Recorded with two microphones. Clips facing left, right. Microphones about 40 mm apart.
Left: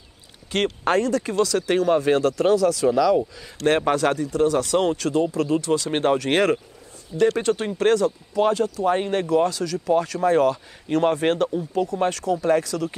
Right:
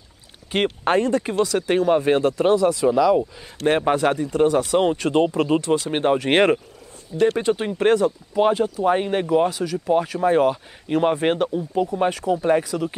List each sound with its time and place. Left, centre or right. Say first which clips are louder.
0.8 s speech: right 1 dB; right
1.5 s speech: right 2 dB; centre
5.9 s speech: right 1 dB; centre